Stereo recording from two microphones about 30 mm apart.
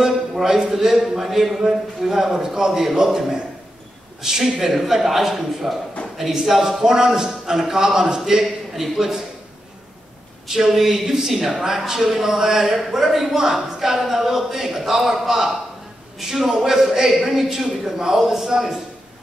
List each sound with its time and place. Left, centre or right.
0.0 s a man's voice: centre
10.5 s a man's voice: centre